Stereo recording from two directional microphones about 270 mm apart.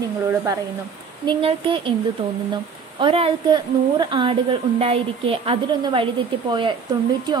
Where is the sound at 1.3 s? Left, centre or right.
Centre.